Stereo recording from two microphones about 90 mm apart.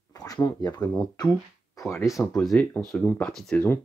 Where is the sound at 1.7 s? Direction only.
35° left (ahead or behind).